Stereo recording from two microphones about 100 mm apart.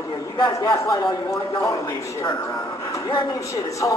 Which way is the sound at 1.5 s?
30° left (ahead or behind).